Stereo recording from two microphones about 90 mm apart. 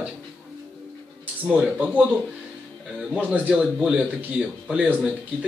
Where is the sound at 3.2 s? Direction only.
15° right (ahead or behind).